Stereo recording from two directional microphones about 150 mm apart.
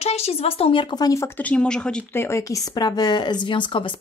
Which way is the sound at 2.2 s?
20° left (ahead or behind).